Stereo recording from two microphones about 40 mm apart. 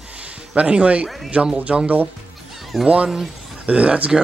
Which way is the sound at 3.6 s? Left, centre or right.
Right.